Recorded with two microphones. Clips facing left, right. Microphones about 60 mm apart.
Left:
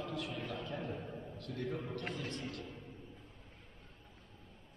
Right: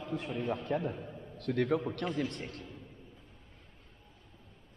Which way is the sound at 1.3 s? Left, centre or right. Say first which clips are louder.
Right 12 dB; right.